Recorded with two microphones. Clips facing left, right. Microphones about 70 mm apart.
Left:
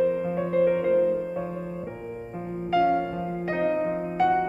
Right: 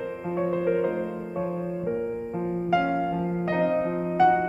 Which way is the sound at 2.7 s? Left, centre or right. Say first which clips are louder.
Left 3 dB; centre.